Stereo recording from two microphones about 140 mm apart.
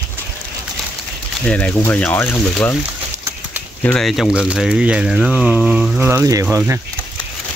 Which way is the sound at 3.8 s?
10° left (ahead or behind).